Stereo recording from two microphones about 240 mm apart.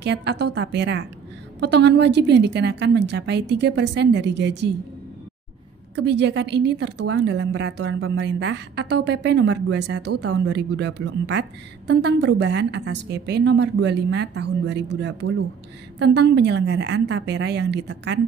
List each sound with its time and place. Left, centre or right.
0.0 s a woman's voice: right
5.9 s a woman's voice: right